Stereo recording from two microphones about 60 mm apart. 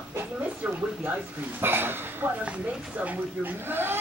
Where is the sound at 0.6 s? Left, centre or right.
Right.